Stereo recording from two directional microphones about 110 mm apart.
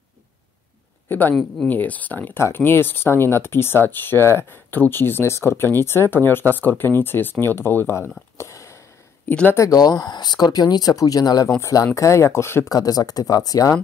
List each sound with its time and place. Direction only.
1.0 s speech: 15° left (ahead or behind)
8.4 s a sound: 25° left (ahead or behind)
9.3 s speech: 10° left (ahead or behind)
9.6 s speech: 35° left (ahead or behind)
12.7 s speech: 35° left (ahead or behind)